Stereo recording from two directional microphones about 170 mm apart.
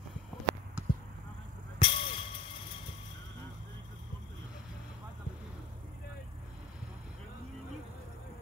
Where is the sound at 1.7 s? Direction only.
30° left (ahead or behind).